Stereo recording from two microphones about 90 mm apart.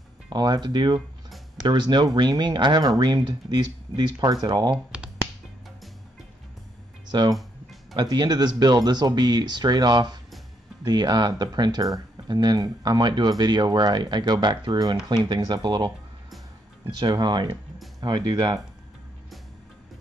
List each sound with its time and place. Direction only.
0.3 s speech: 50° right (ahead or behind)
7.1 s speech: 50° right (ahead or behind)
17.0 s speech: 50° right (ahead or behind)